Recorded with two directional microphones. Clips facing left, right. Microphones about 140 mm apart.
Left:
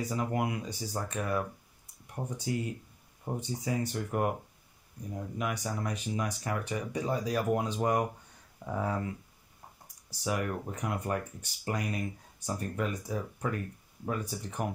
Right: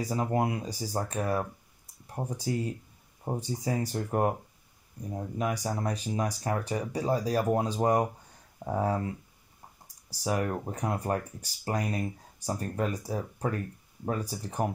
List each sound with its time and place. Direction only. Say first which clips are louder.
0.0 s speech: right 3 dB; 35° right (ahead or behind)